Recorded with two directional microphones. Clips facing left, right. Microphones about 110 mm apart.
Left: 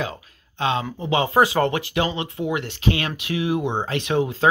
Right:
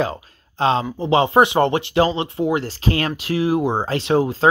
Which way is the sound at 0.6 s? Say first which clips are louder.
Right 5 dB; 35° right (ahead or behind).